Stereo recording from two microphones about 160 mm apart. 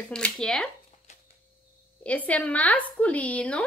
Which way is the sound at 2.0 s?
10° left (ahead or behind).